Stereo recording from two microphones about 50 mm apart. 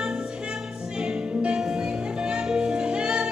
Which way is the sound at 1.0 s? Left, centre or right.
Centre.